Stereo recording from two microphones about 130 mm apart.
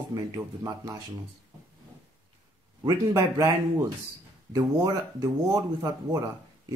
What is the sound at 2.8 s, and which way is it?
Speech, 25° right (ahead or behind).